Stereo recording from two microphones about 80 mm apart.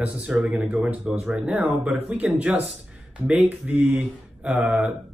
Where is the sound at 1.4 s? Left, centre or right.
Right.